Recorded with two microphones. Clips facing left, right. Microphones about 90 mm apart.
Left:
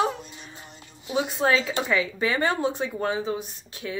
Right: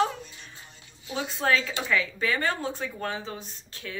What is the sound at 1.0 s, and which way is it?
Speech, 15° left (ahead or behind).